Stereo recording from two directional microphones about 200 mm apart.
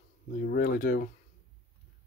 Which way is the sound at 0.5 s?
45° left (ahead or behind).